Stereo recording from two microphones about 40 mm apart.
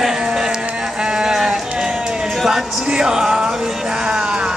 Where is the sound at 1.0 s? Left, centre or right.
Centre.